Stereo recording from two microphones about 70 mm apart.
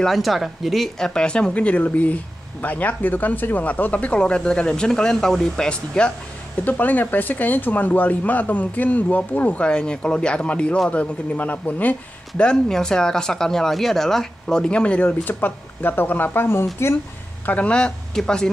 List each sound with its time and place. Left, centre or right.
0.0 s speech: centre
6.6 s speech: left
17.5 s speech: centre